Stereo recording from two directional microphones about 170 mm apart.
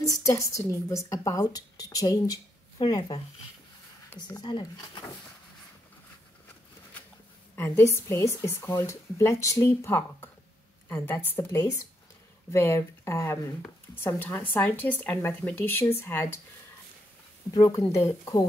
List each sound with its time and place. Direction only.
0.0 s a woman's voice: 20° left (ahead or behind)
7.5 s speech: 15° left (ahead or behind)
17.5 s a woman's voice: 20° left (ahead or behind)